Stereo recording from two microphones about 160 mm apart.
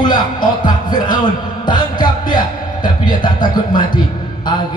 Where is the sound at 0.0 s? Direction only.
25° left (ahead or behind).